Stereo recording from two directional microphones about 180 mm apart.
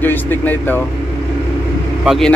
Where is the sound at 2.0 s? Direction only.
Centre (ahead or behind).